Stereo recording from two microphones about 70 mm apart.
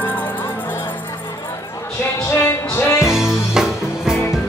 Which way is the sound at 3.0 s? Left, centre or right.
Centre.